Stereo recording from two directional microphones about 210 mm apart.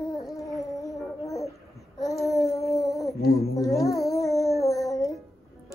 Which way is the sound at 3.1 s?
45° left (ahead or behind).